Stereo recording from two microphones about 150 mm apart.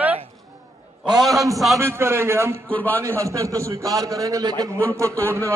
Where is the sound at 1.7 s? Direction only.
15° right (ahead or behind).